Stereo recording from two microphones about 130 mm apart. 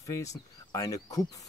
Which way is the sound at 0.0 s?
25° left (ahead or behind).